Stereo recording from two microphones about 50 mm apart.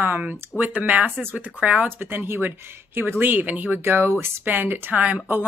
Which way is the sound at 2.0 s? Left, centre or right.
Right.